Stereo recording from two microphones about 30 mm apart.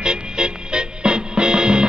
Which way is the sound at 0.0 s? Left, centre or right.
Right.